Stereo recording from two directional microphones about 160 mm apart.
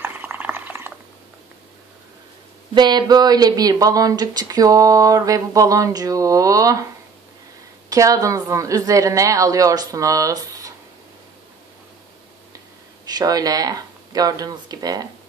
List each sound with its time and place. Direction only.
0.0 s a sound: 10° right (ahead or behind)
2.7 s speech: 25° right (ahead or behind)
7.9 s speech: 20° right (ahead or behind)
13.0 s speech: 25° right (ahead or behind)